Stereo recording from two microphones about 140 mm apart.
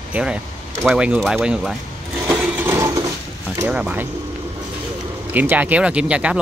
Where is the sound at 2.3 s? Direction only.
20° right (ahead or behind).